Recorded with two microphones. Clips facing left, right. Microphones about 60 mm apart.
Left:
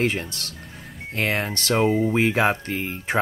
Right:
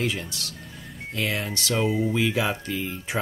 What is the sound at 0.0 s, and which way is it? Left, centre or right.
Speech, left.